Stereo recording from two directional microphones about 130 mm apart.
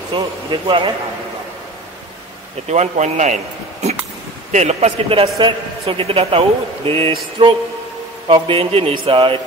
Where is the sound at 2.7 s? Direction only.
60° right (ahead or behind).